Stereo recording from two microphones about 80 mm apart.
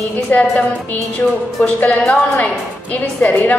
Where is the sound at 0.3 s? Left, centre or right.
Centre.